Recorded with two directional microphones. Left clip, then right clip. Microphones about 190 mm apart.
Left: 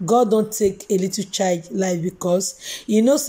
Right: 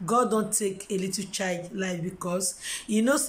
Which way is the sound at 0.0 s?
20° left (ahead or behind).